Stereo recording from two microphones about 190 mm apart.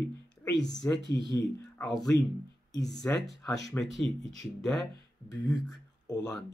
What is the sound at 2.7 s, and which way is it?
Speech, 65° left (ahead or behind).